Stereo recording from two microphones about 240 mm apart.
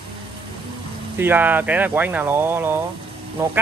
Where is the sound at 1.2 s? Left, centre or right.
Centre.